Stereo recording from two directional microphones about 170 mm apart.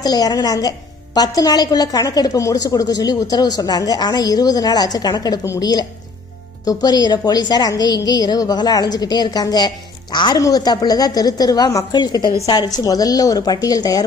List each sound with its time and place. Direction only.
0.0 s a woman's voice: 25° left (ahead or behind)